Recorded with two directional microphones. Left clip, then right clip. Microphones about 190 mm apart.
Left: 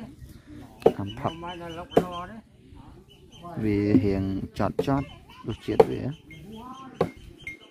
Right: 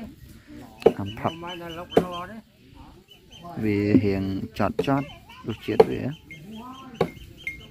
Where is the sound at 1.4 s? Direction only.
35° left (ahead or behind).